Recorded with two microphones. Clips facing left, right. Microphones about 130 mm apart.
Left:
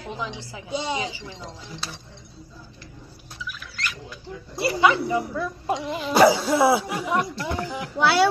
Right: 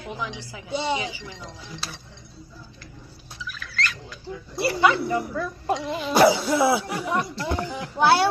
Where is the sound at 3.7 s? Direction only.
20° left (ahead or behind).